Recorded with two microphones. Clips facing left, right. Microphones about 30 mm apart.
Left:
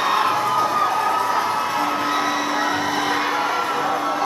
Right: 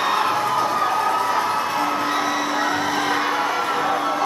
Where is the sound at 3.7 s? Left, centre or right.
Centre.